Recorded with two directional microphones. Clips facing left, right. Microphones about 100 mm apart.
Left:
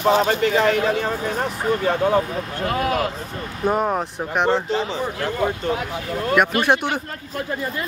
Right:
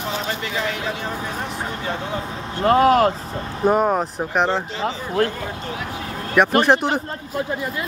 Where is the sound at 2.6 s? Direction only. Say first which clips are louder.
Right 8 dB; 40° right (ahead or behind).